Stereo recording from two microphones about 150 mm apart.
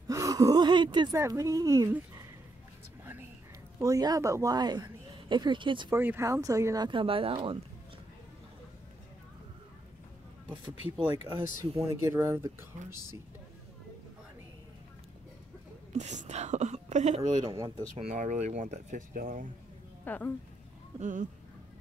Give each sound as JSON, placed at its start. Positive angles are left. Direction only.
{"t": 0.1, "sound": "speech", "side_deg": -20}
{"t": 1.1, "sound": "speech", "side_deg": -20}
{"t": 3.8, "sound": "speech", "side_deg": -25}
{"t": 5.9, "sound": "speech", "side_deg": -15}
{"t": 10.5, "sound": "speech", "side_deg": -30}
{"t": 12.0, "sound": "speech", "side_deg": -15}
{"t": 15.9, "sound": "speech", "side_deg": -50}
{"t": 20.1, "sound": "speech", "side_deg": 10}
{"t": 21.0, "sound": "speech", "side_deg": -60}